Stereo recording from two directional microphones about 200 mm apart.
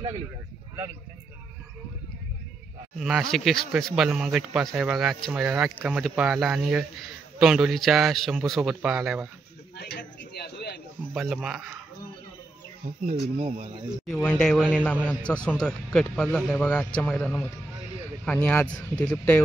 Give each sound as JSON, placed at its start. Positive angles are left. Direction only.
{"t": 3.0, "sound": "speech", "side_deg": 0}
{"t": 9.8, "sound": "a sound", "side_deg": 55}
{"t": 11.1, "sound": "speech", "side_deg": 0}
{"t": 13.1, "sound": "speech", "side_deg": -30}
{"t": 14.0, "sound": "speech", "side_deg": 0}